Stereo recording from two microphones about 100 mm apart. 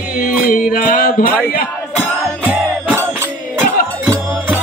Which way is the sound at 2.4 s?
20° right (ahead or behind).